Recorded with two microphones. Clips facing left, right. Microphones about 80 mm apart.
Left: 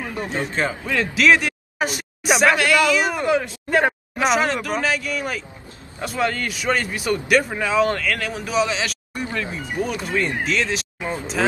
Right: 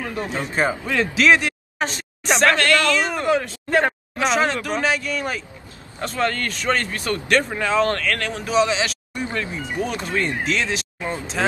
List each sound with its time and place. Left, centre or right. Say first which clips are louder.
0.0 s a man's voice: right 1 dB; centre
0.6 s speech: right 3 dB; centre
1.1 s a sound: even; centre
1.9 s speech: left 2 dB; centre
3.7 s speech: even; centre
9.2 s speech: right 1 dB; right
9.8 s speech: left 1 dB; centre
11.0 s speech: even; centre